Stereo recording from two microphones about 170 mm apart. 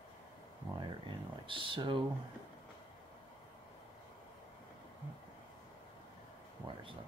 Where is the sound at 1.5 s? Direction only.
30° right (ahead or behind).